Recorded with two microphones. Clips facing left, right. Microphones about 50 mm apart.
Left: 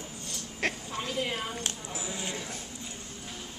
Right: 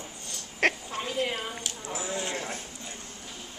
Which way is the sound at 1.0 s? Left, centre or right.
Centre.